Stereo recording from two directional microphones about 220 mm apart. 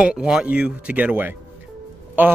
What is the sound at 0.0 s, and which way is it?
Speech, 5° right (ahead or behind).